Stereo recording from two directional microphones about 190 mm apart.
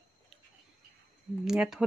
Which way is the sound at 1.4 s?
5° right (ahead or behind).